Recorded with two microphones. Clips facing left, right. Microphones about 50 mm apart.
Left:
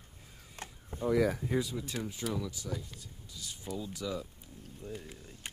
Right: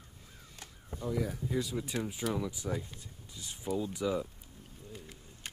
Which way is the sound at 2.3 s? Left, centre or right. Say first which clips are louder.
Right 2 dB; centre.